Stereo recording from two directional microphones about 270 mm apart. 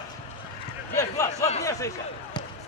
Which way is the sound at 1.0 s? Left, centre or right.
Centre.